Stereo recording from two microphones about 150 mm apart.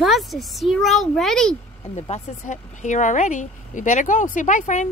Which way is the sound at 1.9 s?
55° left (ahead or behind).